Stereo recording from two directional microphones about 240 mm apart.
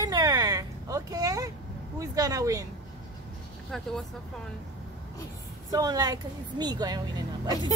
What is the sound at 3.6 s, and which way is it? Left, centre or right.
Speech, centre.